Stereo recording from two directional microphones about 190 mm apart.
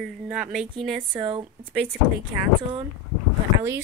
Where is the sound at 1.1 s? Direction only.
25° right (ahead or behind).